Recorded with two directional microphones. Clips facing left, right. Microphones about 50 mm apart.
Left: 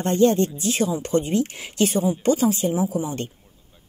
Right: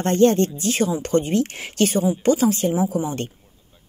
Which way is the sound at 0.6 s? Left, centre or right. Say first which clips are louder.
Right 1 dB; right.